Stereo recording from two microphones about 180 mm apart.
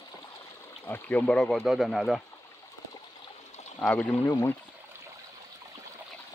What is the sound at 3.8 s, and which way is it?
Speech, 5° left (ahead or behind).